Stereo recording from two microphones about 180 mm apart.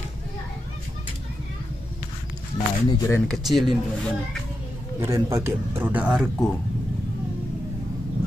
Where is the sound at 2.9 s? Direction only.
20° left (ahead or behind).